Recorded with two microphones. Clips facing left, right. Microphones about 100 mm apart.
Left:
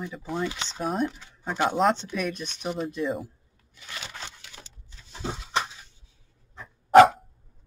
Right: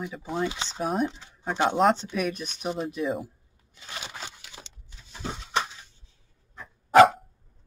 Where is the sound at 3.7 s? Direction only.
30° right (ahead or behind).